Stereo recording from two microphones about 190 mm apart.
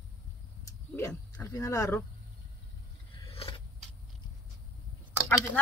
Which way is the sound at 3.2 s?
30° left (ahead or behind).